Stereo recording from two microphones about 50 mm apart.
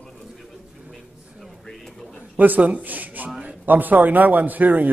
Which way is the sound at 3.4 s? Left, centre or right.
Right.